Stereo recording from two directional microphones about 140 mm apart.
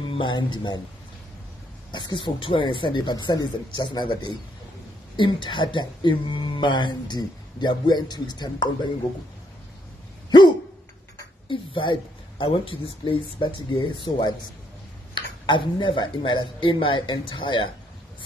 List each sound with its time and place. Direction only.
0.1 s speech: 35° left (ahead or behind)
1.9 s speech: 30° left (ahead or behind)
11.4 s speech: 35° left (ahead or behind)